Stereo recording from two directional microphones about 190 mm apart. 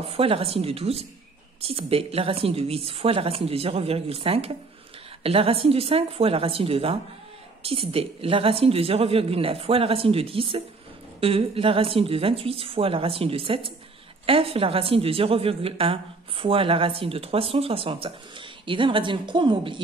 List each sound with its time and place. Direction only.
0.0 s a woman's voice: 30° right (ahead or behind)